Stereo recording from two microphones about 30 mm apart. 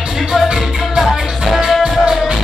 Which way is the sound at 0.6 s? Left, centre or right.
Centre.